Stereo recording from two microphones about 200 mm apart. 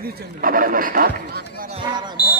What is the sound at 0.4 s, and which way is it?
Speech, 45° right (ahead or behind).